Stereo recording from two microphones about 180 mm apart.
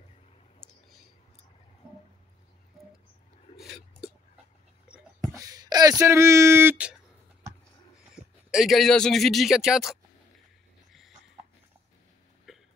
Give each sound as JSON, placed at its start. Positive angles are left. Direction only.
{"t": 0.6, "sound": "clicking", "side_deg": 0}
{"t": 3.5, "sound": "a sound", "side_deg": 0}
{"t": 4.8, "sound": "whispering", "side_deg": -5}
{"t": 5.3, "sound": "a sound", "side_deg": -20}
{"t": 8.1, "sound": "a man's voice", "side_deg": -5}
{"t": 12.5, "sound": "hiccup", "side_deg": 0}